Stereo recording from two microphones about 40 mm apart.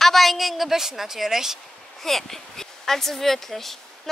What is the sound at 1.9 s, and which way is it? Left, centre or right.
Speech, centre.